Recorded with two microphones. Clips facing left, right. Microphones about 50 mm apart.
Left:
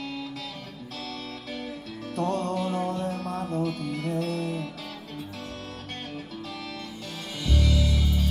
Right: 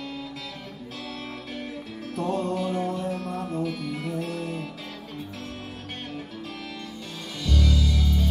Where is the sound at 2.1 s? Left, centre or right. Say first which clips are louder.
Even; centre.